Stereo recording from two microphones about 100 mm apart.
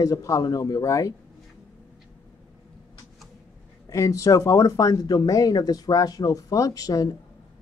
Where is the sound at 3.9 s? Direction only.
35° left (ahead or behind).